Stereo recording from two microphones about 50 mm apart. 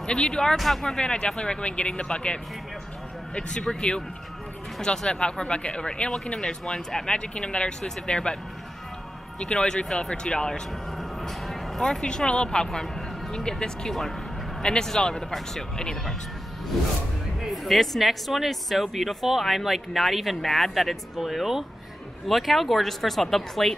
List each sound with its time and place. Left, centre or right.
0.0 s speech: centre
0.6 s speech: centre
0.9 s speech: centre
9.4 s speech: centre
11.0 s music: centre
13.3 s speech: centre
17.4 s speech: centre